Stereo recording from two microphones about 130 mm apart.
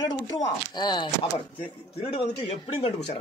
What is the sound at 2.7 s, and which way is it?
Speech, 50° left (ahead or behind).